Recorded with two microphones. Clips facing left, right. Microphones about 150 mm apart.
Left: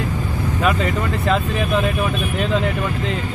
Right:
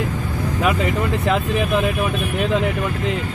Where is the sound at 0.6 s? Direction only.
15° right (ahead or behind).